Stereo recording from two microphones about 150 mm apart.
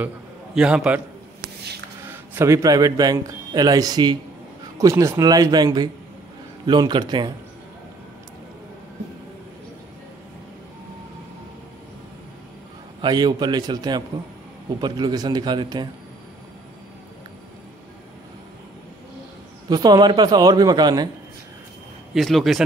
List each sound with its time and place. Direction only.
0.6 s a man's voice: 5° right (ahead or behind)
2.0 s a man's voice: 20° right (ahead or behind)
13.0 s a man's voice: 30° right (ahead or behind)
19.7 s a man's voice: 25° right (ahead or behind)
22.1 s speech: centre (ahead or behind)